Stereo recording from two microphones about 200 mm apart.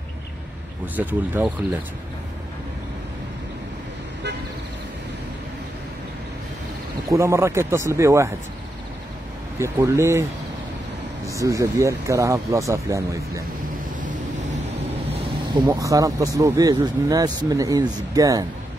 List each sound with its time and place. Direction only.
0.9 s speech: 10° right (ahead or behind)
7.1 s speech: 15° right (ahead or behind)
9.6 s speech: 15° right (ahead or behind)
11.3 s speech: 15° right (ahead or behind)
15.1 s speech: 20° right (ahead or behind)